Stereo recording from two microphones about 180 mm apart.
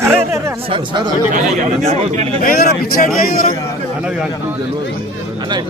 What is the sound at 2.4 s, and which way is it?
A man's voice, 60° left (ahead or behind).